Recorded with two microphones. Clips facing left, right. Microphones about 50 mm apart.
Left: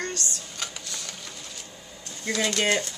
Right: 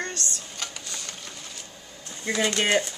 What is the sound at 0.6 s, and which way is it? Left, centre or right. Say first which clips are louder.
Printer: left 1 dB; centre.